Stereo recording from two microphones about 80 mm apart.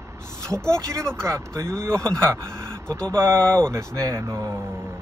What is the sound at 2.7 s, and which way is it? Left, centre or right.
Vehicle, centre.